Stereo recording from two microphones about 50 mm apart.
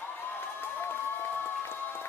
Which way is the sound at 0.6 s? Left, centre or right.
Left.